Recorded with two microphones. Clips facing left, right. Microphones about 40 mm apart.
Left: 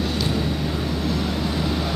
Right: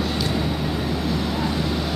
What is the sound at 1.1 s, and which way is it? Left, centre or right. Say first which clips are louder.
Vehicle: even; centre.